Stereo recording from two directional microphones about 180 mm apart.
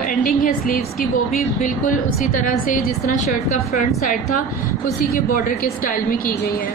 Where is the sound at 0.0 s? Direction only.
50° left (ahead or behind).